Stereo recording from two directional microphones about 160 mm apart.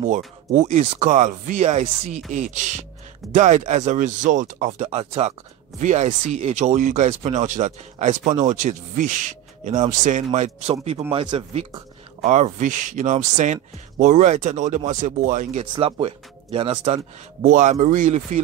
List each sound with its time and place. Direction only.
0.5 s speech: 45° right (ahead or behind)
15.6 s speech: 30° right (ahead or behind)
17.4 s speech: 55° right (ahead or behind)